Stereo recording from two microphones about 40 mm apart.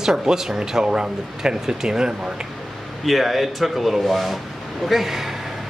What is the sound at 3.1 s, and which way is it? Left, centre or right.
Speech, centre.